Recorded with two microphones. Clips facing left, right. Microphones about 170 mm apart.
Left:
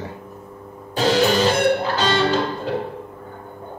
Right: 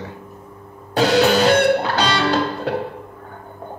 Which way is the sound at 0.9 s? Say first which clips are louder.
Right 2 dB; 75° right (ahead or behind).